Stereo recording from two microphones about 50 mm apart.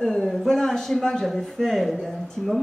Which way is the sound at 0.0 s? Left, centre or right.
Centre.